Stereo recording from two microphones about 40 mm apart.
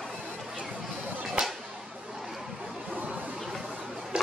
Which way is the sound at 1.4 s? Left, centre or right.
Right.